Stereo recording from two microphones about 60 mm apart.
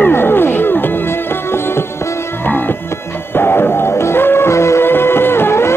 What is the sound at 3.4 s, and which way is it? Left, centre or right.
Music, left.